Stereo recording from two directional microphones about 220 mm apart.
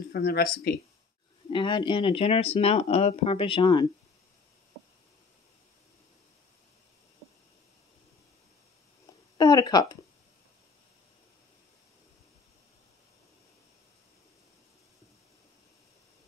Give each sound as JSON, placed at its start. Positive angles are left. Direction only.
{"t": 0.1, "sound": "speech", "side_deg": 45}
{"t": 1.5, "sound": "speech", "side_deg": 20}
{"t": 9.4, "sound": "speech", "side_deg": 15}